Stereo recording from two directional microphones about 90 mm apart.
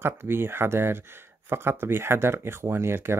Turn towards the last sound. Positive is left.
turn(degrees=-30)  # may be behind; listen again after turning